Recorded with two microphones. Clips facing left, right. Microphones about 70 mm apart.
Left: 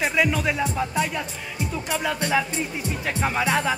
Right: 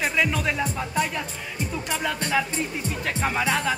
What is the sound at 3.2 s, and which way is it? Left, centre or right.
Music, centre.